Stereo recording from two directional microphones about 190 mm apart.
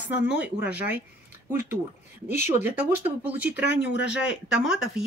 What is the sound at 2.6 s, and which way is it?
Speech, 10° right (ahead or behind).